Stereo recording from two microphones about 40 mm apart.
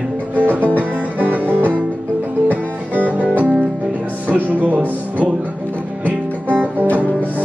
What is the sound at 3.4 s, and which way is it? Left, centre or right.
Music, right.